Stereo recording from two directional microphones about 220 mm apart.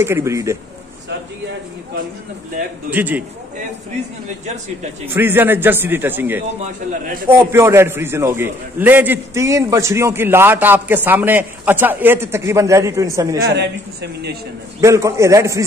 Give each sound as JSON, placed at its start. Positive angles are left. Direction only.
{"t": 0.0, "sound": "a man's voice", "side_deg": -10}
{"t": 2.9, "sound": "a man's voice", "side_deg": -10}
{"t": 5.0, "sound": "a man's voice", "side_deg": -10}
{"t": 13.5, "sound": "a man's voice", "side_deg": -50}
{"t": 14.8, "sound": "a man's voice", "side_deg": -15}